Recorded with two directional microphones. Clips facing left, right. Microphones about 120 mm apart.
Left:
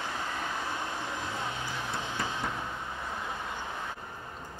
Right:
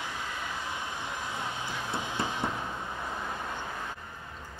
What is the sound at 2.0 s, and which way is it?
Music, 15° right (ahead or behind).